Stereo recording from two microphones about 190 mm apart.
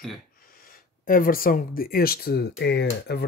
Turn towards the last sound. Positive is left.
turn(degrees=60)  # may be behind; listen again after turning